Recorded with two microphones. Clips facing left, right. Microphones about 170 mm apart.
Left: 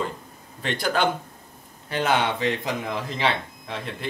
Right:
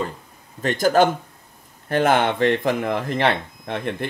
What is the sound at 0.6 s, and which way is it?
Speech, 45° right (ahead or behind).